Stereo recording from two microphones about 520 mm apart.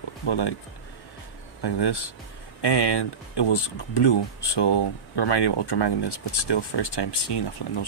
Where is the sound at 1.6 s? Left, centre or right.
Left.